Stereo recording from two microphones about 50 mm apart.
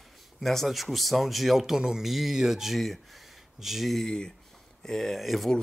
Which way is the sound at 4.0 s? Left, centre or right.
Centre.